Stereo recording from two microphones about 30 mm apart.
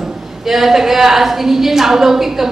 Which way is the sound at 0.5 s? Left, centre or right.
Centre.